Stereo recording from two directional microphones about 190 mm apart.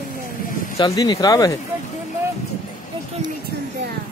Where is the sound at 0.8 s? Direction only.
20° left (ahead or behind).